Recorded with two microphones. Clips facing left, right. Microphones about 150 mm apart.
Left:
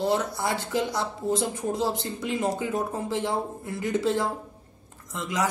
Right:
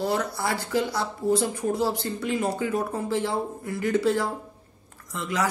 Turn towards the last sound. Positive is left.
turn(degrees=20)  # may be behind; listen again after turning